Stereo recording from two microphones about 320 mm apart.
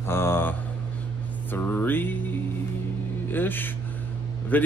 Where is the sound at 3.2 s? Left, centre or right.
Centre.